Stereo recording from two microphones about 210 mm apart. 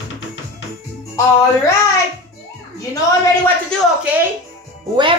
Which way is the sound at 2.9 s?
15° left (ahead or behind).